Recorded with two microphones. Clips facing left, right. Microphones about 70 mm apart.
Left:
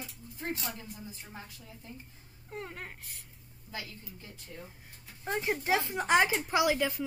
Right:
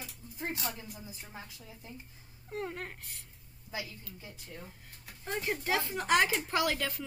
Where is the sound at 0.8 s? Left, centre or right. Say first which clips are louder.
Left 1 dB; centre.